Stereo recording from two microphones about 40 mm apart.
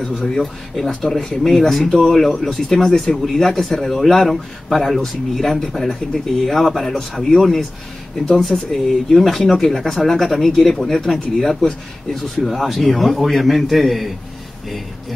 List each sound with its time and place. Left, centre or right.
0.0 s speech: centre